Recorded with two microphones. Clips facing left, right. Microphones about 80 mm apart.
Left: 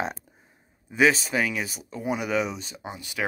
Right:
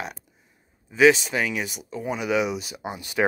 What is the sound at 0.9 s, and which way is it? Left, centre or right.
Speech, centre.